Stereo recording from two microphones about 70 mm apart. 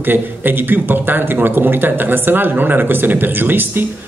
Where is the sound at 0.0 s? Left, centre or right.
Right.